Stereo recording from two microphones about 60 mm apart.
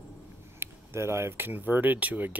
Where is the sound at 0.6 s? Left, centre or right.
Right.